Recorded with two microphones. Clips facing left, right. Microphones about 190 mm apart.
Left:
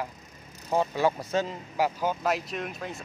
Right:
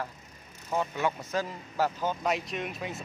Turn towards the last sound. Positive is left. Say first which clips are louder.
# even
turn(degrees=0)  # may be behind; listen again after turning